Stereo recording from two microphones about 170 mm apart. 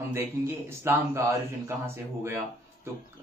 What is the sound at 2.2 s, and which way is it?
Speech, 15° right (ahead or behind).